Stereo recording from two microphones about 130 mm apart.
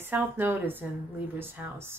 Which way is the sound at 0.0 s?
15° right (ahead or behind).